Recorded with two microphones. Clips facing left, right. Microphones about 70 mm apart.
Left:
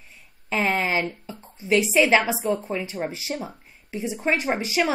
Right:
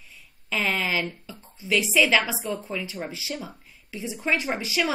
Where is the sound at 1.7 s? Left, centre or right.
Left.